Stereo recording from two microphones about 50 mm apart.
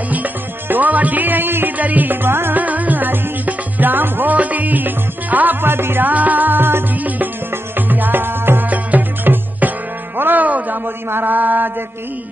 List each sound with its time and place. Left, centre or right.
0.1 s music: right
2.2 s music: right
2.5 s music: right
6.0 s music: right
8.6 s music: right
11.1 s mantra: right